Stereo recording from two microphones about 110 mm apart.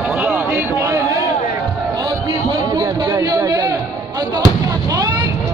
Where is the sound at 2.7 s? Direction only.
35° right (ahead or behind).